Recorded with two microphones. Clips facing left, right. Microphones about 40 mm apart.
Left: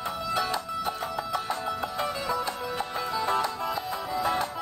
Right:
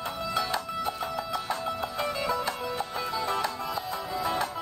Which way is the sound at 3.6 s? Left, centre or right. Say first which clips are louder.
Left 2 dB; centre.